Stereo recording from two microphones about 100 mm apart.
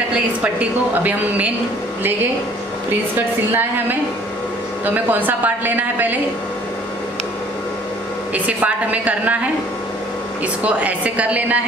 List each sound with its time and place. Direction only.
0.1 s a woman's voice: 15° right (ahead or behind)
3.5 s a woman's voice: 20° right (ahead or behind)
8.3 s a woman's voice: 15° right (ahead or behind)